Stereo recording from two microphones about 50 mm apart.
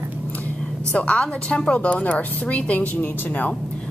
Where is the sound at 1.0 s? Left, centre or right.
Left.